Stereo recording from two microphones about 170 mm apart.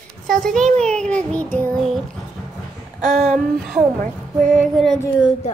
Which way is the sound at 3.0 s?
45° right (ahead or behind).